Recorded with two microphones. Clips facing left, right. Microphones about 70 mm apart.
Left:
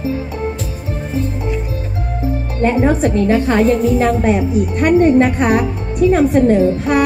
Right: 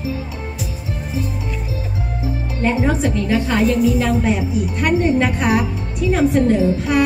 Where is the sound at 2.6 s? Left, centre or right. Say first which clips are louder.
Left 4 dB; left.